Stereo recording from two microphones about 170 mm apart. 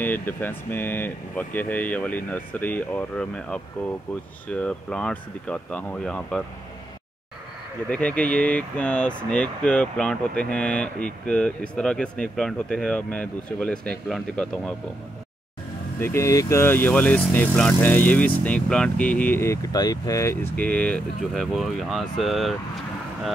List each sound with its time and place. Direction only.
0.0 s speech: 10° left (ahead or behind)
7.9 s speech: 5° left (ahead or behind)
16.0 s speech: 15° left (ahead or behind); by 22.6 s centre (ahead or behind)